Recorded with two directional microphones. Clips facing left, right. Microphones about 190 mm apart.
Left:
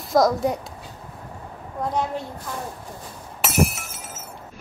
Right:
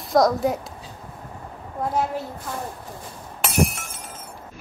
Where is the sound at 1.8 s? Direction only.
5° right (ahead or behind).